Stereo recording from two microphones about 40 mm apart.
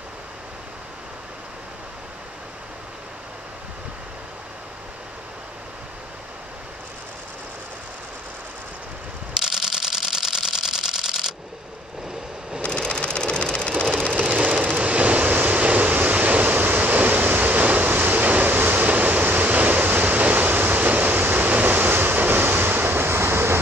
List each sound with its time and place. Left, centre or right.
9.4 s camera: centre
12.6 s vehicle: left
14.1 s vehicle: right
16.6 s waves: right
18.4 s vehicle: right
19.9 s waves: right